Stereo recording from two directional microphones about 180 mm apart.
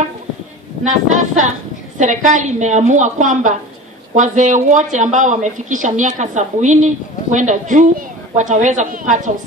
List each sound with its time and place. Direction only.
0.8 s speech: 45° right (ahead or behind)